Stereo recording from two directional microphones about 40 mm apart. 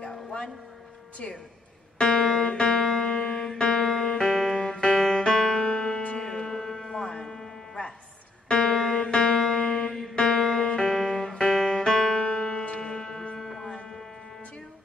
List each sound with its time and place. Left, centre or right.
1.2 s a woman's voice: left
2.0 s music: centre
12.2 s music: left; by 13.7 s centre